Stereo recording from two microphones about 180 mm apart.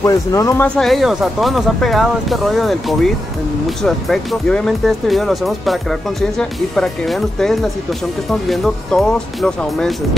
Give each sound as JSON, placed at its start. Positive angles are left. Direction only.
{"t": 0.0, "sound": "speech", "side_deg": 20}
{"t": 0.7, "sound": "speech", "side_deg": 0}